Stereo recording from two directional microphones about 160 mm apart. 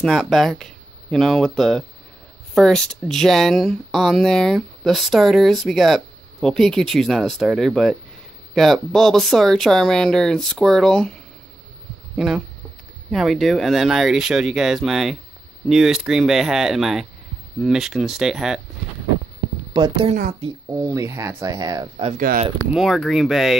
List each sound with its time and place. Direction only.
0.0 s speech: centre (ahead or behind)
12.2 s speech: 5° right (ahead or behind)
19.7 s a woman's voice: 30° right (ahead or behind)
22.1 s speech: 60° right (ahead or behind)
22.7 s speech: centre (ahead or behind)